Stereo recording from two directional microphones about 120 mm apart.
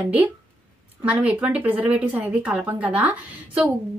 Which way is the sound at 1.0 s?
10° right (ahead or behind).